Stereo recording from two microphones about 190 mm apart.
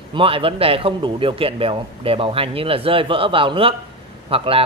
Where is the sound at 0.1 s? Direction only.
30° right (ahead or behind).